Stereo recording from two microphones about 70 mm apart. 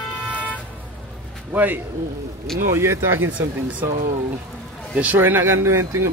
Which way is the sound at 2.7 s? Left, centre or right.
Right.